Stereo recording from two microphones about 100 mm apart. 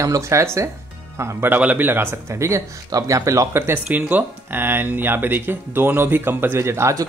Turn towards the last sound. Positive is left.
turn(degrees=-30)  # may be behind; listen again after turning